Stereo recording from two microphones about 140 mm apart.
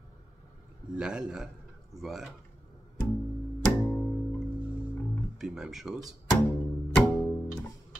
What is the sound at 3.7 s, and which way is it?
Music, 10° left (ahead or behind).